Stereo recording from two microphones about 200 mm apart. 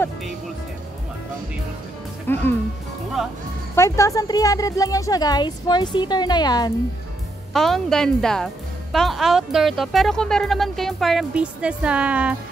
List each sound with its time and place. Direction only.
2.3 s speech: 10° left (ahead or behind)
3.2 s speech: centre (ahead or behind)
3.7 s speech: 15° left (ahead or behind)
7.5 s speech: centre (ahead or behind)